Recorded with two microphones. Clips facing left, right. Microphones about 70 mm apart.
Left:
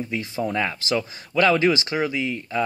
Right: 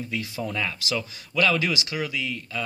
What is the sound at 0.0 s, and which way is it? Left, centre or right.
Speech, left.